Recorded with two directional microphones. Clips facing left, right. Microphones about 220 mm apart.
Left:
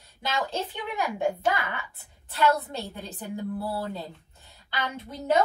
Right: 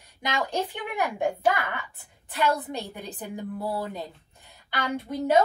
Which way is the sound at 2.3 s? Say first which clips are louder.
Left 1 dB; 15° right (ahead or behind).